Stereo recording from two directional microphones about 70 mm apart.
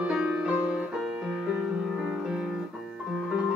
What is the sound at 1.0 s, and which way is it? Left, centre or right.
Music, centre.